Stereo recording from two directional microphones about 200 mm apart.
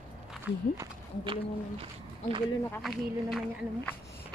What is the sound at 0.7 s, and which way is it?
Speech, 25° right (ahead or behind).